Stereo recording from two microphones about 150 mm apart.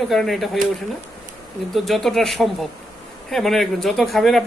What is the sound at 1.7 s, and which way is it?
A man's voice, centre (ahead or behind).